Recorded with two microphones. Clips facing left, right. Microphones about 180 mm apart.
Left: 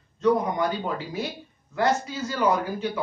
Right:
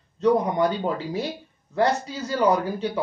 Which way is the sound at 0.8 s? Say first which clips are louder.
Right 3 dB; 30° right (ahead or behind).